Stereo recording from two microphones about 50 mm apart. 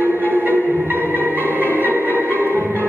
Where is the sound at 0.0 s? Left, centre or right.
Right.